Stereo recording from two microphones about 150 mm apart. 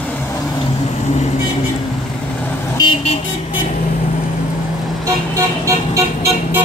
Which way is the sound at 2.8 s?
35° left (ahead or behind).